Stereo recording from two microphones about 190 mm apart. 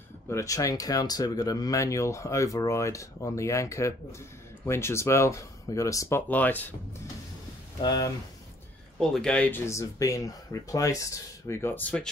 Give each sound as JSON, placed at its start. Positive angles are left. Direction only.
{"t": 0.3, "sound": "speech", "side_deg": 15}
{"t": 7.8, "sound": "speech", "side_deg": 20}
{"t": 9.1, "sound": "speech", "side_deg": 5}